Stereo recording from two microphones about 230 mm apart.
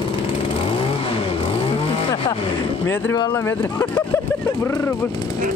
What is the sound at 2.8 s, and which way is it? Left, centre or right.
Speech, centre.